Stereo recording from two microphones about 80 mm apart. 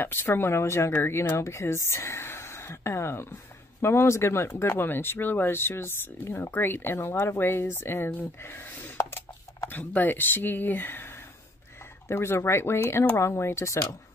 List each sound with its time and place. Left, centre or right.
0.0 s speech: left